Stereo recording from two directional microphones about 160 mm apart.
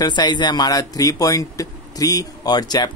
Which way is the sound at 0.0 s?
25° left (ahead or behind).